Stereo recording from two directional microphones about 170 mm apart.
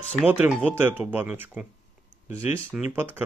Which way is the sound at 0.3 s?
10° right (ahead or behind).